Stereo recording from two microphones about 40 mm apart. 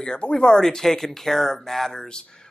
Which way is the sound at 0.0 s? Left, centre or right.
Centre.